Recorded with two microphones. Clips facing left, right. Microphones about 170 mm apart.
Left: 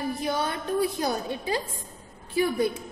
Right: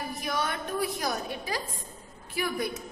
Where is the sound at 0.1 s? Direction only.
30° left (ahead or behind).